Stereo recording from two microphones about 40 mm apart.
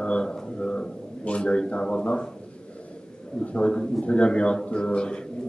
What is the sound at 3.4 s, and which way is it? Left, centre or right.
A man's voice, left.